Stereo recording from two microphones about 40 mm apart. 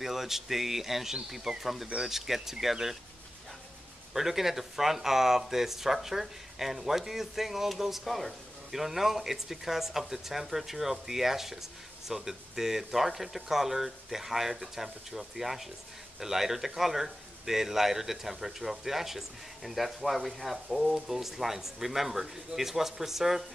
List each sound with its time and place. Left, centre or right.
0.0 s speech: centre
4.1 s speech: centre